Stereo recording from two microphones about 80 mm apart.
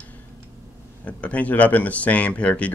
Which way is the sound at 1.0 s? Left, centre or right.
Centre.